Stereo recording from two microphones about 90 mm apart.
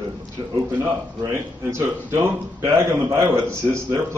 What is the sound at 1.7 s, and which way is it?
Speech, 30° right (ahead or behind).